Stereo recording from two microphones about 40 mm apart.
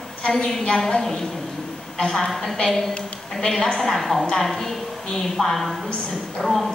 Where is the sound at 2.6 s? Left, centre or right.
Centre.